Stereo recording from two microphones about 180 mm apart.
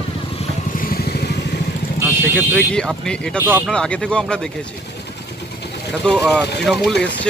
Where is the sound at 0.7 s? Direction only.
55° left (ahead or behind).